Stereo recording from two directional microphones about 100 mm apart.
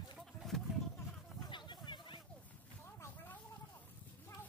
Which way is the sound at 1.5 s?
50° left (ahead or behind).